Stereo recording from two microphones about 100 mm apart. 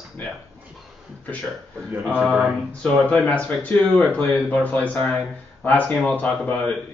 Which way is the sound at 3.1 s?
15° left (ahead or behind).